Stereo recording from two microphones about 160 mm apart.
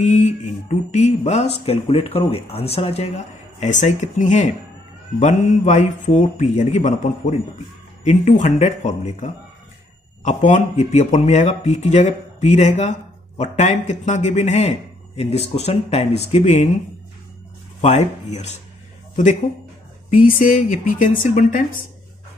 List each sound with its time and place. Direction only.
0.0 s a man's voice: 50° left (ahead or behind)
17.7 s a man's voice: 45° left (ahead or behind)
20.1 s speech: 60° left (ahead or behind)